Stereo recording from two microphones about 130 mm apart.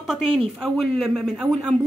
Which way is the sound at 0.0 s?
Centre (ahead or behind).